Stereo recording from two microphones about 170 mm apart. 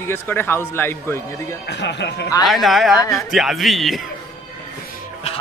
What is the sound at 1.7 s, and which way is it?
Speech, 85° left.